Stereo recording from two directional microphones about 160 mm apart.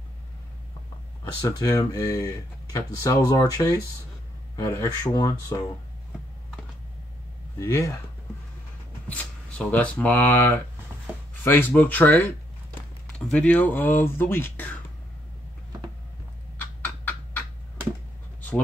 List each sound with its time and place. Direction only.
1.4 s speech: 20° left (ahead or behind)
7.5 s speech: 20° left (ahead or behind)
9.1 s speech: 10° left (ahead or behind)